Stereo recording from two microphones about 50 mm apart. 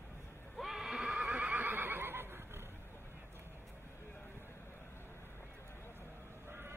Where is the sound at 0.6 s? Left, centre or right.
Centre.